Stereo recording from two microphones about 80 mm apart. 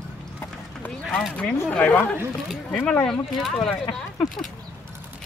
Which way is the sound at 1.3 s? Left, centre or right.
Centre.